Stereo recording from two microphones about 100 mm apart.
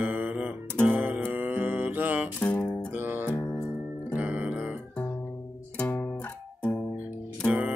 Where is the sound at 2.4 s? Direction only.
15° left (ahead or behind).